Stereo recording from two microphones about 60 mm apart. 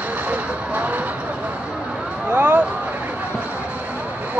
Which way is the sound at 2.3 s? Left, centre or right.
Right.